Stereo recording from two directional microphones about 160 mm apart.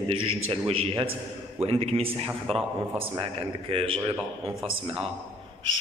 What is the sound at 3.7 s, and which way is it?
Speech, 35° right (ahead or behind).